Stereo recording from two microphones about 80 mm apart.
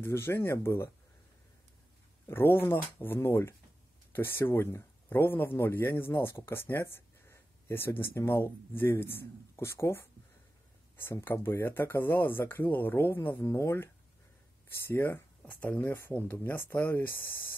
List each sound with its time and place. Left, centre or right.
0.0 s speech: left
2.2 s speech: left
14.9 s speech: left
15.4 s speech: centre